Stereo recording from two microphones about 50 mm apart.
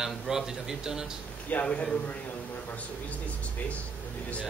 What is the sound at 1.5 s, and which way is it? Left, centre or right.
Speech, left.